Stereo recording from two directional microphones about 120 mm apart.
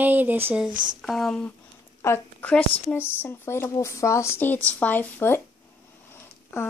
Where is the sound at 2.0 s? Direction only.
20° left (ahead or behind).